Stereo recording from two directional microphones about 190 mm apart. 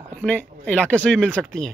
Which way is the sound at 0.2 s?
10° left (ahead or behind).